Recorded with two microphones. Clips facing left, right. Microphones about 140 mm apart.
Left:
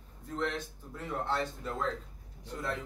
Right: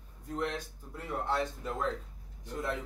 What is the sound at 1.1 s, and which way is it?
Speech, 10° right (ahead or behind).